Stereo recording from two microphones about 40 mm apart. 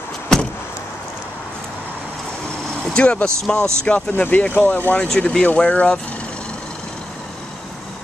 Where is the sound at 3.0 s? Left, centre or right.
Left.